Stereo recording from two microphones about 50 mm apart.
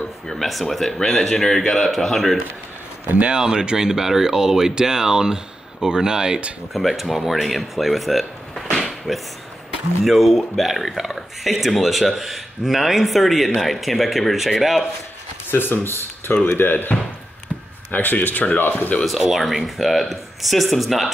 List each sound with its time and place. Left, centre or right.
0.3 s speech: centre
3.3 s speech: centre
6.7 s speech: centre
8.7 s a sound: centre
10.0 s speech: centre
15.5 s speech: left
17.9 s speech: left
19.0 s speech: centre